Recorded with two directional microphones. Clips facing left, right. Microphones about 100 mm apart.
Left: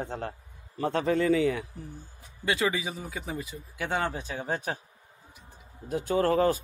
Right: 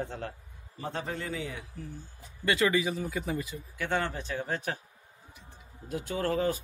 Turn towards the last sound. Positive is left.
turn(degrees=50)  # may be behind; listen again after turning